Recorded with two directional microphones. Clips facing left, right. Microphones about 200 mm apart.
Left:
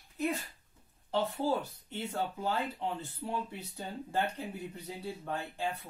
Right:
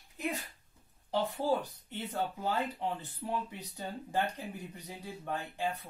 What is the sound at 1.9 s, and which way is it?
Speech, 15° right (ahead or behind).